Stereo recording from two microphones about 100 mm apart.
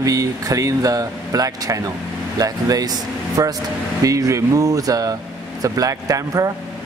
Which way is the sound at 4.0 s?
35° right (ahead or behind).